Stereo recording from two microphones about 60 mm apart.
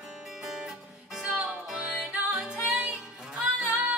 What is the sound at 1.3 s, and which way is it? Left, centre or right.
Music, right.